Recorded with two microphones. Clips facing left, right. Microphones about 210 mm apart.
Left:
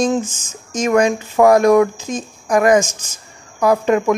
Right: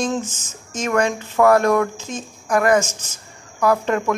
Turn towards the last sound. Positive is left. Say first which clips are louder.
# left 4 dB
turn(degrees=15)  # may be behind; listen again after turning